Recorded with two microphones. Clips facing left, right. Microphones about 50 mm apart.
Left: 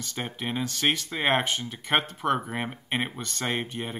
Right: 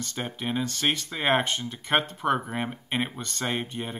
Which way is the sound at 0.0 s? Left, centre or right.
Centre.